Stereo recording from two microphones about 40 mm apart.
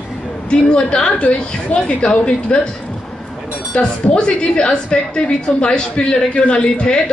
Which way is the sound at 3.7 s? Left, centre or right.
Left.